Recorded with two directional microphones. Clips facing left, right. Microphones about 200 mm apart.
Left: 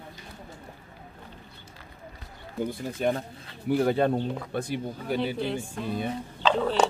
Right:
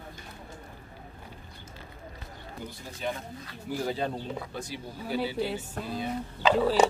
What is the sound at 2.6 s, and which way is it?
Speech, 50° left (ahead or behind).